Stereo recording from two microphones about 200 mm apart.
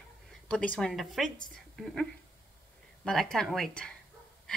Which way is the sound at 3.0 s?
5° left (ahead or behind).